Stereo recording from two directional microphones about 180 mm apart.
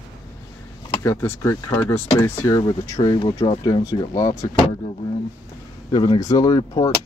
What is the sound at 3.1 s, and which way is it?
Speech, 25° left (ahead or behind).